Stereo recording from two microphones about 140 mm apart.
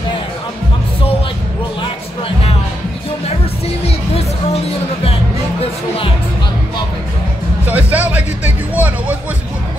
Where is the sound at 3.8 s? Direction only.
45° left (ahead or behind).